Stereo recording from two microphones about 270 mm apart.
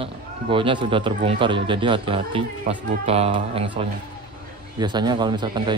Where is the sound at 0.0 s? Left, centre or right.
Centre.